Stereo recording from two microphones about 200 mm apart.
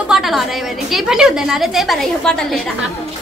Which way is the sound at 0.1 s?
Centre (ahead or behind).